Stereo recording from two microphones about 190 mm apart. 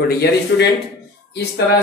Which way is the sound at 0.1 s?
60° left (ahead or behind).